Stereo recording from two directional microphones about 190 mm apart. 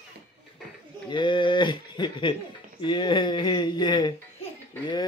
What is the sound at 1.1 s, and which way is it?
Speech, 25° left (ahead or behind).